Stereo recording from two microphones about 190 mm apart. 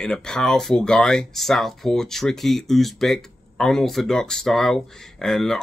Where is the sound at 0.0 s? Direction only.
5° left (ahead or behind).